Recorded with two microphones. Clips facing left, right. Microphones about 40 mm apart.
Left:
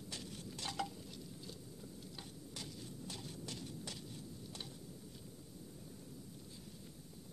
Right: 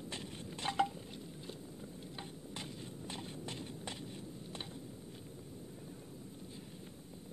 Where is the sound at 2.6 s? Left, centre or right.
Right.